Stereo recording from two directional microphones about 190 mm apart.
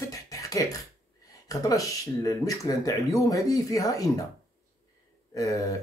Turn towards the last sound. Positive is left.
turn(degrees=15)  # may be behind; listen again after turning